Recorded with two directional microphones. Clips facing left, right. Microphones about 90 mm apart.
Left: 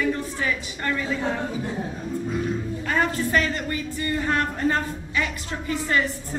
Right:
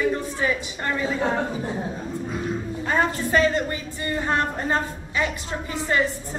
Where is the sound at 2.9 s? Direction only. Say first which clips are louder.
Right 1 dB; 25° right (ahead or behind).